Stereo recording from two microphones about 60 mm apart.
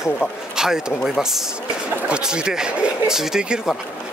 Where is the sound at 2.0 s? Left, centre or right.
Centre.